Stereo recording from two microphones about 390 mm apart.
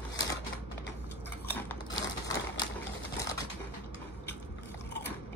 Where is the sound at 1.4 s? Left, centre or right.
Centre.